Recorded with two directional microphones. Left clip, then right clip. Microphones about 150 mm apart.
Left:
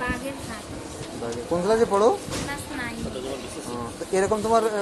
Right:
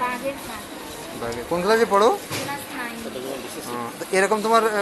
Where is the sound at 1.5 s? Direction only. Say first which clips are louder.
Right 2 dB; 10° left (ahead or behind).